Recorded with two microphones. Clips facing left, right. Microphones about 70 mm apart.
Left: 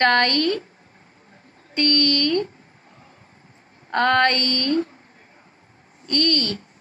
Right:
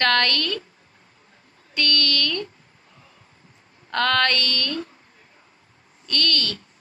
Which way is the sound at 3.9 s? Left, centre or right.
Left.